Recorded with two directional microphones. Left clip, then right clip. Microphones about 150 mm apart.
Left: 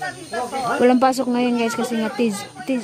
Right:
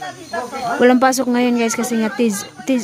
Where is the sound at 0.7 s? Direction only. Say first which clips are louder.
Right 3 dB; 5° right (ahead or behind).